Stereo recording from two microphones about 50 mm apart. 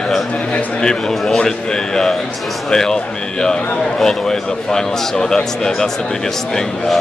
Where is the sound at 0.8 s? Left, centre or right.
Centre.